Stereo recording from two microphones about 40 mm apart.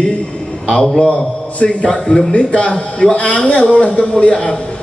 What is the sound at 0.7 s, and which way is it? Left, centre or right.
A man's voice, left.